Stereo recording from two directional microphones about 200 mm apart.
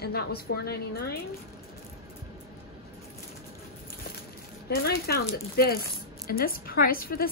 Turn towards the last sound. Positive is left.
turn(degrees=50)  # may be behind; listen again after turning